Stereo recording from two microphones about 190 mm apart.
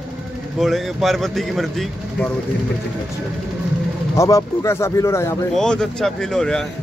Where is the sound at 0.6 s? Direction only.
Centre (ahead or behind).